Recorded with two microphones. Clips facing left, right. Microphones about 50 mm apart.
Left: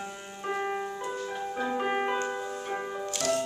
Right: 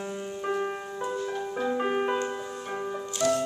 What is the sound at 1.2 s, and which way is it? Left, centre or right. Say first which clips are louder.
Music: right 1 dB; centre.